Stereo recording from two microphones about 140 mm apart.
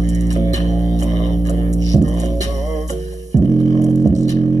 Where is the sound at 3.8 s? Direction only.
25° right (ahead or behind).